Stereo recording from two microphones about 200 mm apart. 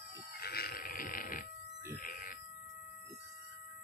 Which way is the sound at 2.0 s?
40° left (ahead or behind).